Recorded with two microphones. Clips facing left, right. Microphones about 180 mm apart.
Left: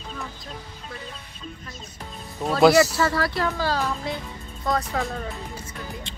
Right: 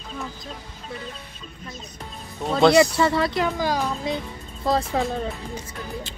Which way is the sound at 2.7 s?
25° right (ahead or behind).